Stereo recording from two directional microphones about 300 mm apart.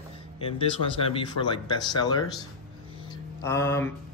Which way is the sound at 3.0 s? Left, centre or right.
Centre.